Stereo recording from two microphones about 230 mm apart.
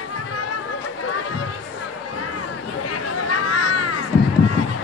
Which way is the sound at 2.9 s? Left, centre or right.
Left.